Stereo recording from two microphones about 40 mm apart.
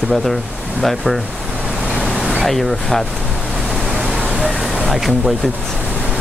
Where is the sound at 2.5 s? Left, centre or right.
Centre.